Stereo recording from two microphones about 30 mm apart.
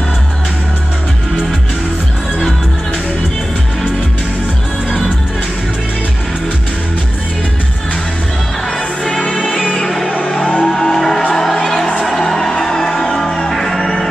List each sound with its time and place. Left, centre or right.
9.8 s music: centre
13.5 s music: centre